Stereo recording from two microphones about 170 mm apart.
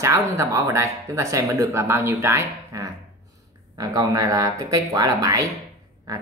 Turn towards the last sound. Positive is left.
turn(degrees=-20)  # may be behind; listen again after turning